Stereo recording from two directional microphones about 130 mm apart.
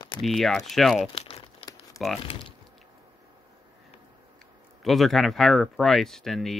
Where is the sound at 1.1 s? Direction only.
50° left (ahead or behind).